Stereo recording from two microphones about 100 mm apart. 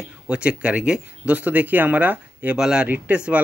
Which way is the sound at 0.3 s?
10° right (ahead or behind).